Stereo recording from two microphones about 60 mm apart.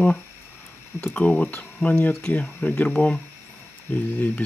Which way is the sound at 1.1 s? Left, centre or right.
Left.